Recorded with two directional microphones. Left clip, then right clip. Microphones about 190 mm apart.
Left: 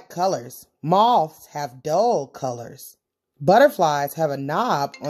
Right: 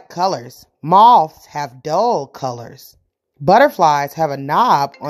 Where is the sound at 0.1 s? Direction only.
20° right (ahead or behind).